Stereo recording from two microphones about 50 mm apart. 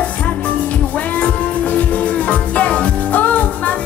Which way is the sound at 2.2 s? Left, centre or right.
Left.